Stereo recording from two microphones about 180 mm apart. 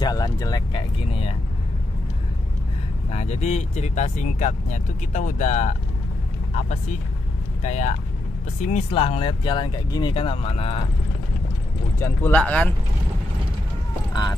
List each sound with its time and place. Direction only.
0.0 s speech: 20° left (ahead or behind)
3.1 s speech: 35° left (ahead or behind)
12.0 s speech: 10° left (ahead or behind)